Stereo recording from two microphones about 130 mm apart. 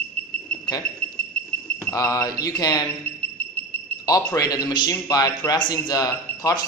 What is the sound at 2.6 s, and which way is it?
Speech, 30° left (ahead or behind).